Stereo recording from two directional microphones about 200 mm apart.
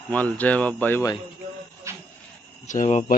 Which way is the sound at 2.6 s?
40° left (ahead or behind).